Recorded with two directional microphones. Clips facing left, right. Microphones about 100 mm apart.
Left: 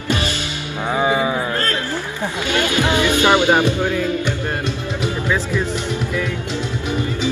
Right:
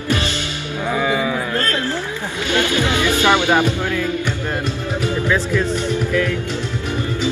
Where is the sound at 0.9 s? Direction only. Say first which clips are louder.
Left 2 dB; 25° left (ahead or behind).